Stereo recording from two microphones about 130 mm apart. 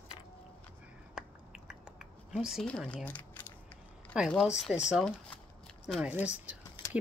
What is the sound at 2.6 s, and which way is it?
Speech, 10° left (ahead or behind).